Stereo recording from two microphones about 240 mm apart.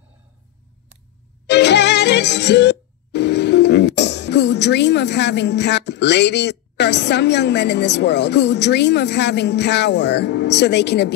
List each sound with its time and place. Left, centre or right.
1.5 s music: left